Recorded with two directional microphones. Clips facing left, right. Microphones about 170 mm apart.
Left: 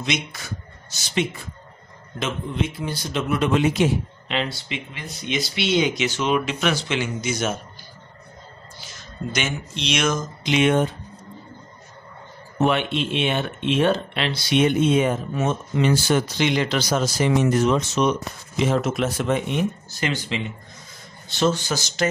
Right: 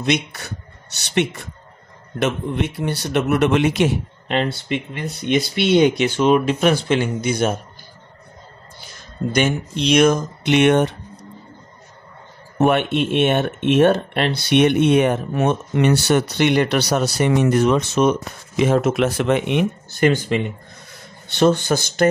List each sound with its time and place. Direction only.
0.0 s a man's voice: 60° right (ahead or behind)
1.1 s a man's voice: 70° right (ahead or behind); by 7.5 s 55° right (ahead or behind)
9.3 s a man's voice: 50° right (ahead or behind); by 11.0 s 70° right (ahead or behind)
12.5 s a man's voice: 50° right (ahead or behind)